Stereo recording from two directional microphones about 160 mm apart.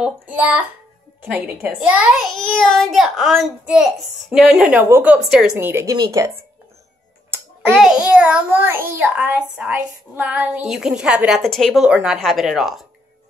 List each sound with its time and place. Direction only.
0.0 s a child's voice: 5° right (ahead or behind)
7.2 s a sound: 15° right (ahead or behind)
7.7 s a child's voice: 5° right (ahead or behind)